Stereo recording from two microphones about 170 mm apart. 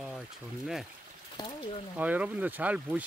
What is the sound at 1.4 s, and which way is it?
Speech, 25° left (ahead or behind).